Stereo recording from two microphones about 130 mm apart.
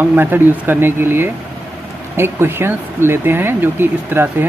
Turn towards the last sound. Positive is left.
turn(degrees=-15)  # may be behind; listen again after turning